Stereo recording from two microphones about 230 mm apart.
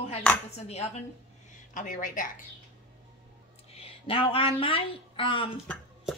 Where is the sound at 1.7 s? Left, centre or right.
Left.